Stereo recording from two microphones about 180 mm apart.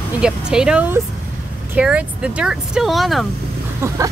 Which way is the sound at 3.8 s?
15° right (ahead or behind).